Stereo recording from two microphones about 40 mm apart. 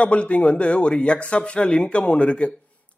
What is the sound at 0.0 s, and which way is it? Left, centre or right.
A man's voice, left.